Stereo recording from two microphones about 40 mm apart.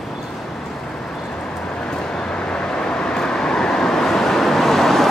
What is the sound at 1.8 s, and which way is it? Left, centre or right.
Vehicle, left.